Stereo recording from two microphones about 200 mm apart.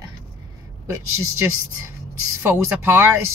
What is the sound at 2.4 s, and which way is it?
Speech, 10° right (ahead or behind).